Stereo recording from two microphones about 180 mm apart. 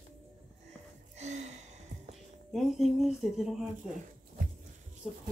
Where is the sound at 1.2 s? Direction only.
40° right (ahead or behind).